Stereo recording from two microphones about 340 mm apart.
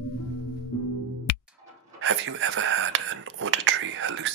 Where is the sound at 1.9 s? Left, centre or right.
Right.